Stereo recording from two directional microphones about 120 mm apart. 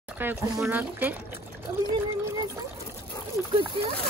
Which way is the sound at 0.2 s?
15° right (ahead or behind).